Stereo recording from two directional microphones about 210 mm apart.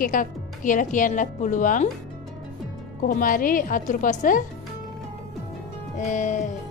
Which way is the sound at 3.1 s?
40° left (ahead or behind).